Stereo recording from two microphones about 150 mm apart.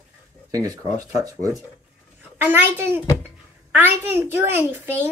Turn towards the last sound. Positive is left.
turn(degrees=-15)  # may be behind; listen again after turning